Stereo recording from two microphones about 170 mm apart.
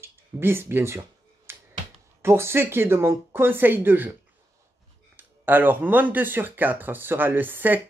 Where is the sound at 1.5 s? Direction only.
15° right (ahead or behind).